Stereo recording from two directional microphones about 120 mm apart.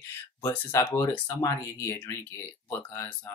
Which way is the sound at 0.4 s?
20° left (ahead or behind).